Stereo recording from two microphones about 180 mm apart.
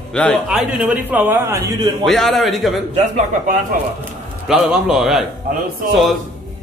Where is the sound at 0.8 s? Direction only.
10° right (ahead or behind).